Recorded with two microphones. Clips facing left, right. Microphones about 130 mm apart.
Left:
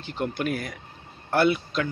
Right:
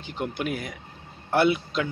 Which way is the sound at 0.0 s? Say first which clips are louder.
Left 2 dB; 10° right (ahead or behind).